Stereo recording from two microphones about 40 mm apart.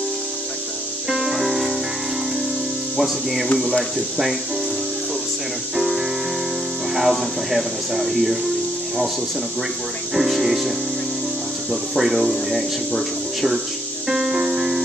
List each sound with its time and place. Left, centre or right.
1.3 s music: centre
3.0 s speech: centre
5.8 s speech: centre
10.1 s speech: centre
11.7 s speech: centre
14.0 s music: centre